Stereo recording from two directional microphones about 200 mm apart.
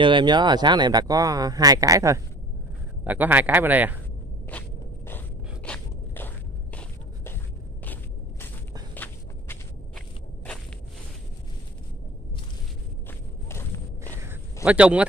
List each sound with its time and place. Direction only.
0.0 s a man's voice: 25° right (ahead or behind)
4.5 s walk: 10° left (ahead or behind)
7.8 s a sound: 10° left (ahead or behind)
8.9 s walk: 10° left (ahead or behind)
13.5 s walk: 15° left (ahead or behind)
14.2 s a sound: 10° right (ahead or behind)